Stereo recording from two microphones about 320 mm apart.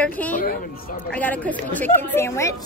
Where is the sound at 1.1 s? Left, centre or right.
Centre.